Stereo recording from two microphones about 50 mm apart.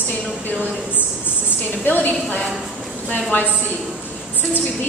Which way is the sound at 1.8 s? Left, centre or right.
Left.